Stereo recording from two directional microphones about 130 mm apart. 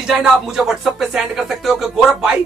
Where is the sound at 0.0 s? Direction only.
5° right (ahead or behind).